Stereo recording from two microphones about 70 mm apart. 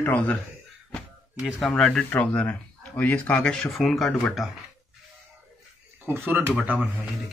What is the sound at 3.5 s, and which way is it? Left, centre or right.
Speech, centre.